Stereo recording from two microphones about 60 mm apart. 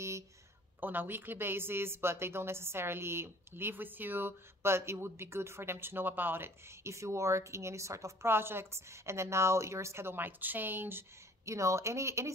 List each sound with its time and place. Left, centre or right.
0.7 s a woman's voice: right
6.8 s a woman's voice: right
8.3 s a woman's voice: right
11.4 s a woman's voice: right